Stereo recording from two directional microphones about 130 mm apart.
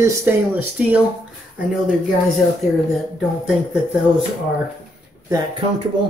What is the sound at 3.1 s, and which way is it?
Speech, centre (ahead or behind).